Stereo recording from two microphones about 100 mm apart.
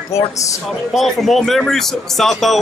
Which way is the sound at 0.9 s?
Centre (ahead or behind).